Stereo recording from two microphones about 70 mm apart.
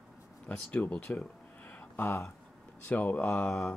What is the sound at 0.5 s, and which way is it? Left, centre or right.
Speech, left.